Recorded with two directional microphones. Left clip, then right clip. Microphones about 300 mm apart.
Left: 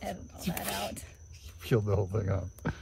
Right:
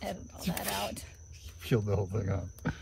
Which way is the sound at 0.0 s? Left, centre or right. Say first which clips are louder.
Even; centre.